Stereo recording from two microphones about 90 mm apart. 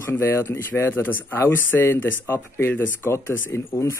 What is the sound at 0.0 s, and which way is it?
Speech, 30° left (ahead or behind).